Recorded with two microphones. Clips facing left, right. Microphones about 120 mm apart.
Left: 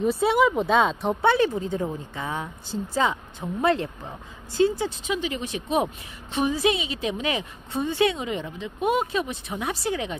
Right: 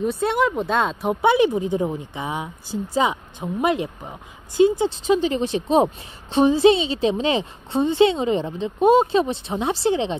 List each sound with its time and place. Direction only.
0.0 s speech: centre (ahead or behind)
1.2 s a woman's voice: 15° right (ahead or behind)
4.8 s a woman's voice: 30° right (ahead or behind)